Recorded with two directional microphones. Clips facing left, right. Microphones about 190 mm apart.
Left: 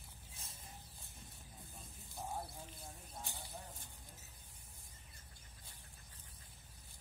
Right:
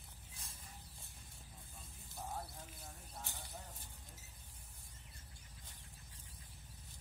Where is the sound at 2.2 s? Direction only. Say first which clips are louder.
Left 1 dB; 10° left (ahead or behind).